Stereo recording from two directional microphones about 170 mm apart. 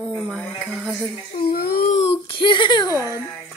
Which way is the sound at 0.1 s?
5° left (ahead or behind).